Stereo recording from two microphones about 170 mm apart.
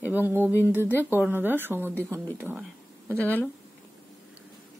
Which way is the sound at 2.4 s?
10° right (ahead or behind).